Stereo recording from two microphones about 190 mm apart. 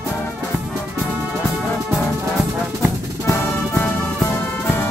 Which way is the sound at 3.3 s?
10° left (ahead or behind).